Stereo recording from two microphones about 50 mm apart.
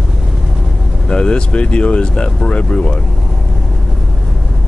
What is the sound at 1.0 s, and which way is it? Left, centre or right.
Speech, centre.